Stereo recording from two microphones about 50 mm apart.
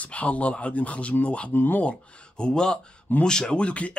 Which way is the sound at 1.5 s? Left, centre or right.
Left.